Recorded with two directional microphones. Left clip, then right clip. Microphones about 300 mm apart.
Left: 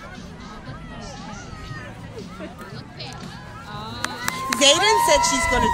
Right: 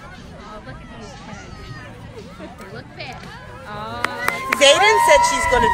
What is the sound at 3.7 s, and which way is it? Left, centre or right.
Speech, centre.